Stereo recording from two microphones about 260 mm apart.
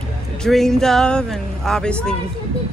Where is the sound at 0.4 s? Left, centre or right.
Centre.